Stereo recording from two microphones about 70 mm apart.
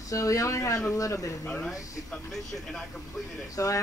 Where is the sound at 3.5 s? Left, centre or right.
Left.